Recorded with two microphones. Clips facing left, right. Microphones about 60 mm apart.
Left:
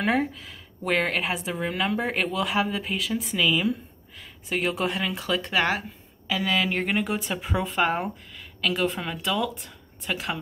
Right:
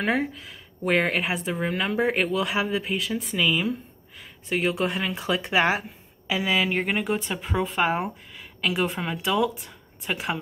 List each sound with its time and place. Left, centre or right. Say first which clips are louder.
0.0 s speech: left 1 dB; centre